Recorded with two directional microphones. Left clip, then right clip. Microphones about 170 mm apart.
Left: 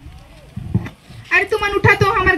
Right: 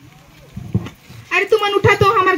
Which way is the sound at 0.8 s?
15° left (ahead or behind).